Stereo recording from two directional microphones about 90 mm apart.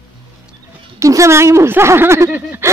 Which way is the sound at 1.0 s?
35° right (ahead or behind).